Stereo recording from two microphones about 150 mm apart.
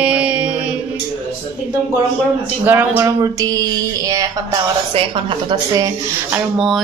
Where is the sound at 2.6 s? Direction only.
15° right (ahead or behind).